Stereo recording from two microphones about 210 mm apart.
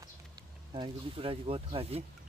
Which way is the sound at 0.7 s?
25° right (ahead or behind).